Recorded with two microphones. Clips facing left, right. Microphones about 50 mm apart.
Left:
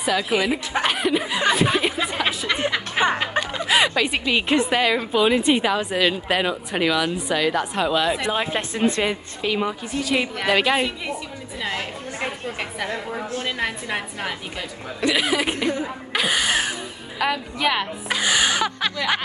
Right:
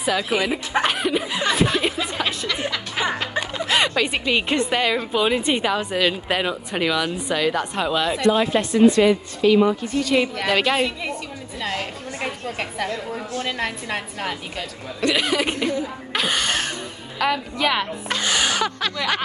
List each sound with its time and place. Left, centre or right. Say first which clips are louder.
0.0 s speech: even; centre
2.2 s speech: left 2 dB; centre
3.2 s a woman's voice: left 1 dB; centre
8.3 s speech: right 5 dB; left
9.4 s a woman's voice: right 7 dB; centre
12.4 s a woman's voice: right 1 dB; centre
16.1 s a sound: left 2 dB; centre
17.2 s a woman's voice: right 1 dB; centre